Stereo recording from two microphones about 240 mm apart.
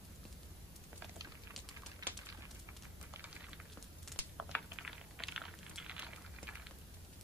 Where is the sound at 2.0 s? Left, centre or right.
Centre.